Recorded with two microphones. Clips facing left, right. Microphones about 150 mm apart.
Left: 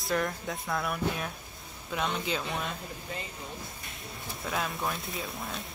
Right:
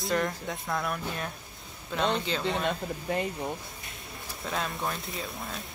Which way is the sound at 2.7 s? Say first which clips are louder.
Right 8 dB; 60° right (ahead or behind).